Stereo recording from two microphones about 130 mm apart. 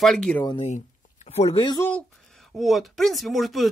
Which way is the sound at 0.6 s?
60° left (ahead or behind).